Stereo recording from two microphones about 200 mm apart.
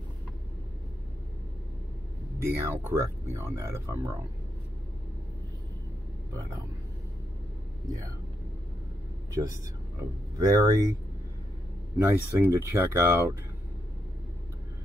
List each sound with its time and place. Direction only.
2.3 s speech: 15° right (ahead or behind)
10.4 s speech: 15° right (ahead or behind)
12.0 s speech: 10° right (ahead or behind)